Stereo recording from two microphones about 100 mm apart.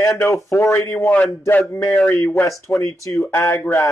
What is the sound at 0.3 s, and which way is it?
Speech, 25° left (ahead or behind).